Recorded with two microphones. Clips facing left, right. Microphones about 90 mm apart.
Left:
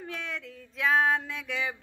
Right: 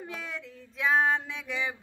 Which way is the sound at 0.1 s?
Centre (ahead or behind).